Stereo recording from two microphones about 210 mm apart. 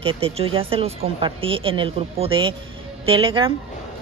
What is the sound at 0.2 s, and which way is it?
A woman's voice, 25° right (ahead or behind).